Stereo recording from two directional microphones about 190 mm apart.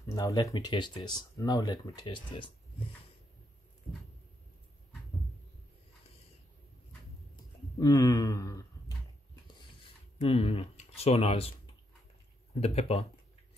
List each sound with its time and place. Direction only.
0.1 s speech: 20° left (ahead or behind)
7.8 s a sound: 20° left (ahead or behind)
10.1 s speech: 30° left (ahead or behind)